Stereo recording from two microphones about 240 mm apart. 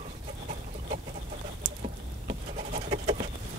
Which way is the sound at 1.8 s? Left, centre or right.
Right.